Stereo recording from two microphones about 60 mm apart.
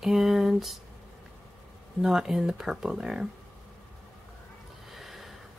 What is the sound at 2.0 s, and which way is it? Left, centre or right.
Speech, centre.